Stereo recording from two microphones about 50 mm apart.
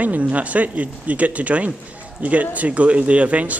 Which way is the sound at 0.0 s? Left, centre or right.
Right.